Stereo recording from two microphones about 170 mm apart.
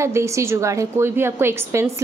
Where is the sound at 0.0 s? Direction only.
15° right (ahead or behind).